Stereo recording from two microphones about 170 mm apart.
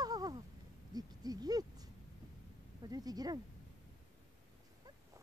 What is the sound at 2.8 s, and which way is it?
Speech, 20° right (ahead or behind).